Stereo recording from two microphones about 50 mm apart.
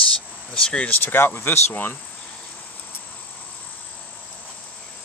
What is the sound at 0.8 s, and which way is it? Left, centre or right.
Speech, left.